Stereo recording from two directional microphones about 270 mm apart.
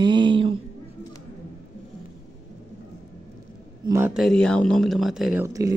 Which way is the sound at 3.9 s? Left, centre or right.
Centre.